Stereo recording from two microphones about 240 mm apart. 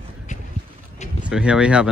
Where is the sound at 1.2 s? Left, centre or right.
Centre.